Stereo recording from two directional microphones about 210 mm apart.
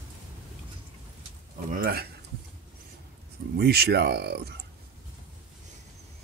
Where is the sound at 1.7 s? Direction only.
45° right (ahead or behind).